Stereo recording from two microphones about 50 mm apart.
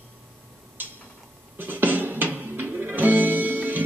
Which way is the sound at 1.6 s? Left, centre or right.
Right.